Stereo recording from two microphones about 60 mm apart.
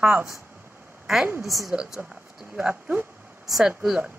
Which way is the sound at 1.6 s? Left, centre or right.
Centre.